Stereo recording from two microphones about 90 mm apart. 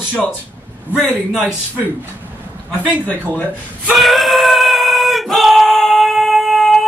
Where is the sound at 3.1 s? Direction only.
20° left (ahead or behind).